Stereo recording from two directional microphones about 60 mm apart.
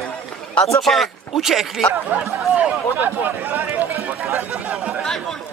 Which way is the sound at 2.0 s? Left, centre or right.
Right.